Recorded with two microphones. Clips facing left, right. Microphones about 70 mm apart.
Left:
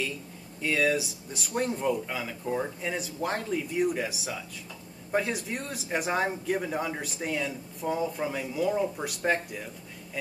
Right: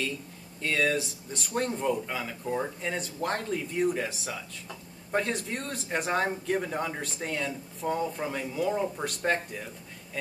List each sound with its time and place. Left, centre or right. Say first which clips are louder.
0.6 s a man's voice: left 1 dB; centre